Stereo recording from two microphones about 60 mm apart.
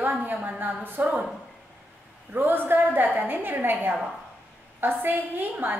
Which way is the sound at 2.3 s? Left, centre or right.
Right.